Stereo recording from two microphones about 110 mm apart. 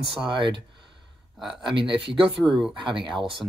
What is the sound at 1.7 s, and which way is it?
Speech, 50° right (ahead or behind).